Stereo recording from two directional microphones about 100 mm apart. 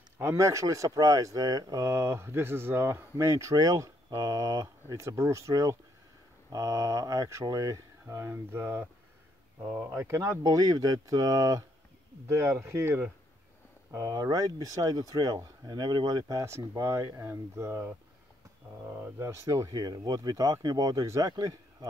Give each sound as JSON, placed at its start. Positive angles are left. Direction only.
{"t": 0.2, "sound": "speech", "side_deg": -30}
{"t": 10.4, "sound": "speech", "side_deg": -40}
{"t": 12.3, "sound": "speech", "side_deg": -30}